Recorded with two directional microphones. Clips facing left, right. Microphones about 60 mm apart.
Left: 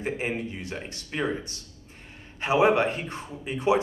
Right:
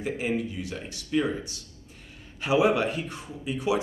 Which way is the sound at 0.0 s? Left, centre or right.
Left.